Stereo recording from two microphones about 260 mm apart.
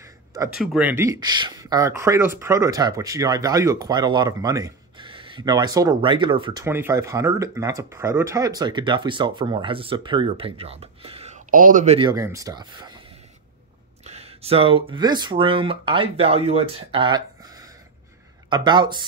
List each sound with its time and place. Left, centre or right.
0.0 s a sound: centre
0.6 s speech: centre
14.0 s speech: right